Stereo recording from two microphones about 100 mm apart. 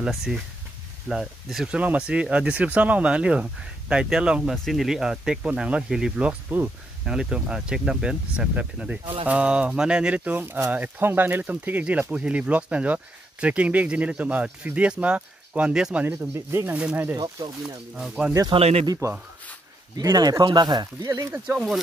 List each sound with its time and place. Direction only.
0.0 s speech: 5° right (ahead or behind); by 17.2 s 20° right (ahead or behind)
17.4 s speech: 40° right (ahead or behind)
17.9 s speech: 5° right (ahead or behind)
18.5 s speech: 90° right
20.0 s speech: 40° right (ahead or behind)
21.5 s speech: centre (ahead or behind)